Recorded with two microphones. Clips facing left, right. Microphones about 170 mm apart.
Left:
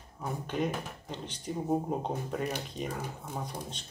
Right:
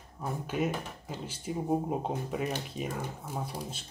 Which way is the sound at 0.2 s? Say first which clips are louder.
Right 1 dB; 5° right (ahead or behind).